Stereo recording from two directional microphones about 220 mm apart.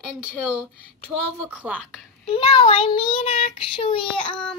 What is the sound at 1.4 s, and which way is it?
Speech, 5° right (ahead or behind).